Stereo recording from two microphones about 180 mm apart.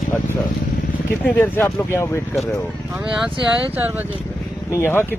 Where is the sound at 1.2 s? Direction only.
10° left (ahead or behind).